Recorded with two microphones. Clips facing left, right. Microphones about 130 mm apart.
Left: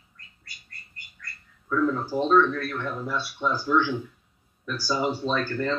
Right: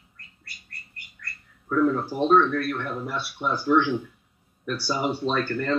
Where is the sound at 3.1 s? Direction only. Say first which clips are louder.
Left 2 dB; 70° right (ahead or behind).